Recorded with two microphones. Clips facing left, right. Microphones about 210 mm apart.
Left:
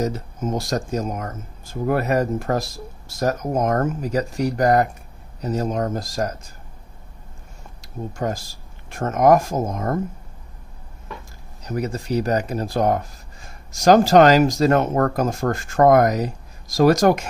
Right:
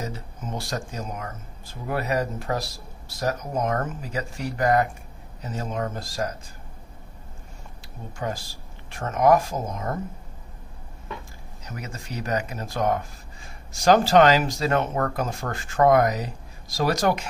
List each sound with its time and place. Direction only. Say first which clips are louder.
0.0 s speech: left 10 dB; 45° left (ahead or behind)
8.2 s speech: left 4 dB; 45° left (ahead or behind)
11.6 s speech: left 12 dB; 35° left (ahead or behind)